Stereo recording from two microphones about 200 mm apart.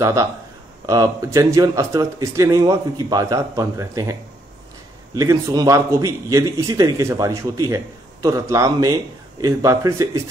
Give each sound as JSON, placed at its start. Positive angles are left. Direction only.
{"t": 0.0, "sound": "a man's voice", "side_deg": -15}